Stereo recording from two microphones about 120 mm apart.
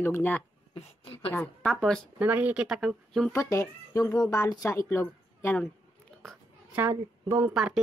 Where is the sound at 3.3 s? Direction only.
25° left (ahead or behind).